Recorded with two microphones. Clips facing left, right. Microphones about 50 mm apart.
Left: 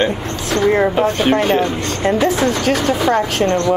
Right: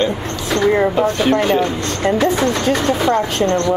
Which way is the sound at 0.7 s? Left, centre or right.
Centre.